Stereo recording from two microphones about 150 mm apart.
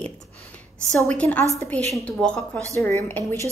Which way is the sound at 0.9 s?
10° left (ahead or behind).